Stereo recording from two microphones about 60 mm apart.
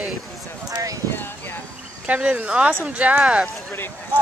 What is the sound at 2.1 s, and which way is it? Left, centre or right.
Speech, right.